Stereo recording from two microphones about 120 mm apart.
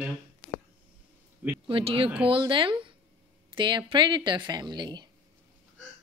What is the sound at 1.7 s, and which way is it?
Speech, 50° right (ahead or behind).